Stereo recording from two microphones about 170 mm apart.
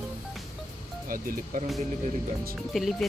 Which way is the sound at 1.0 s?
55° right (ahead or behind).